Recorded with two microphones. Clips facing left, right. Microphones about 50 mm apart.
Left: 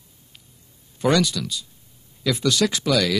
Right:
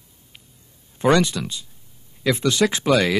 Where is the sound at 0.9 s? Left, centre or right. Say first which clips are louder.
Right 2 dB; right.